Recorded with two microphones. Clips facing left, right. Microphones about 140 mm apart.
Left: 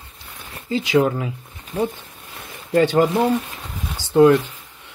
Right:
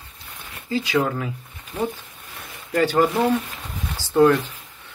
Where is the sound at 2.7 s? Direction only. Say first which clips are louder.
Left 3 dB; 25° left (ahead or behind).